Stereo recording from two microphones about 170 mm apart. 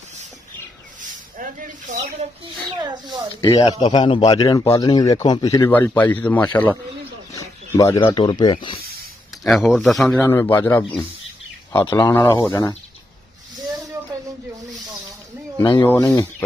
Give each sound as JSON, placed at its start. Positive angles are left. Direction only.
{"t": 1.4, "sound": "speech", "side_deg": -50}
{"t": 2.8, "sound": "speech", "side_deg": -25}
{"t": 3.4, "sound": "a man's voice", "side_deg": 30}
{"t": 9.4, "sound": "speech", "side_deg": 0}
{"t": 10.1, "sound": "a man's voice", "side_deg": 15}
{"t": 11.8, "sound": "a man's voice", "side_deg": 25}
{"t": 15.5, "sound": "speech", "side_deg": 25}
{"t": 15.8, "sound": "a man's voice", "side_deg": 15}